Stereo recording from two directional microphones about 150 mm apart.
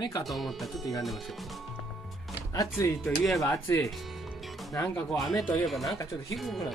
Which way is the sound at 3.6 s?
20° left (ahead or behind).